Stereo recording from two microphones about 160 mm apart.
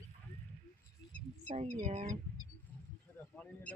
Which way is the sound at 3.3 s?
10° left (ahead or behind).